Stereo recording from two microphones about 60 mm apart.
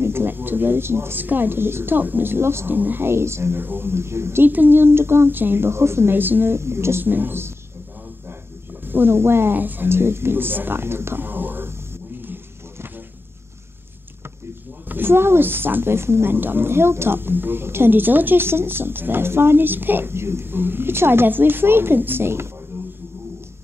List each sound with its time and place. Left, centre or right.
0.0 s a woman's voice: right
4.5 s a woman's voice: right
8.8 s a woman's voice: right
14.9 s a woman's voice: right
22.7 s a sound: right